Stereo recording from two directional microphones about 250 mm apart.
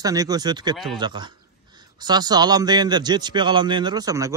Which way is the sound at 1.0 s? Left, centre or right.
Centre.